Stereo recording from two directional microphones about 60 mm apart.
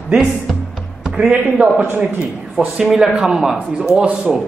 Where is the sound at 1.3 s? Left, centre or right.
Right.